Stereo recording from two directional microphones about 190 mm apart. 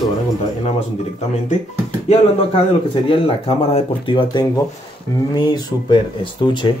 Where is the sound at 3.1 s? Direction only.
30° left (ahead or behind).